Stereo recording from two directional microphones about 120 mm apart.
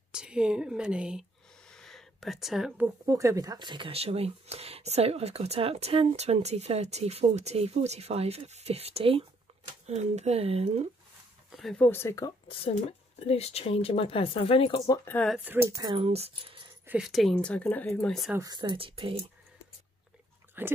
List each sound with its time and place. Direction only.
0.1 s speech: 5° right (ahead or behind)
1.7 s a sound: 5° left (ahead or behind)
3.1 s speech: 30° right (ahead or behind); by 10.8 s 60° right (ahead or behind)
11.5 s speech: centre (ahead or behind)
11.8 s speech: 20° left (ahead or behind)
13.2 s speech: 60° left (ahead or behind)
15.3 s speech: 15° right (ahead or behind)
16.0 s speech: 55° right (ahead or behind)
17.0 s speech: centre (ahead or behind)
18.4 s speech: 40° right (ahead or behind)
20.6 s dog: 20° right (ahead or behind)